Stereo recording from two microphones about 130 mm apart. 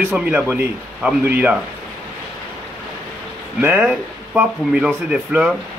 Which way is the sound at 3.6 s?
10° right (ahead or behind).